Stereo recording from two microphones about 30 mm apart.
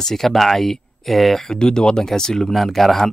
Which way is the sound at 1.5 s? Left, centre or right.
Left.